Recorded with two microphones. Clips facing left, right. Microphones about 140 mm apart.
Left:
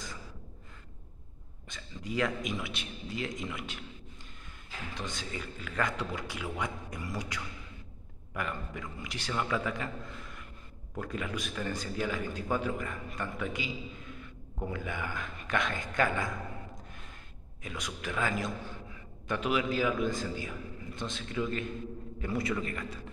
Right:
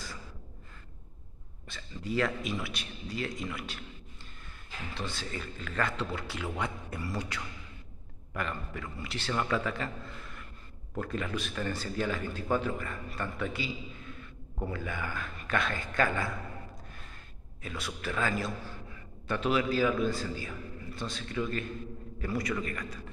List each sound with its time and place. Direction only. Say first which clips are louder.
1.7 s a man's voice: right 3 dB; 15° left (ahead or behind)
4.9 s a man's voice: right 2 dB; 15° left (ahead or behind)
8.4 s a man's voice: right 1 dB; 15° left (ahead or behind)
11.0 s a man's voice: right 2 dB; 10° left (ahead or behind)
14.7 s a man's voice: even; 15° left (ahead or behind)
17.6 s a man's voice: right 1 dB; 15° left (ahead or behind)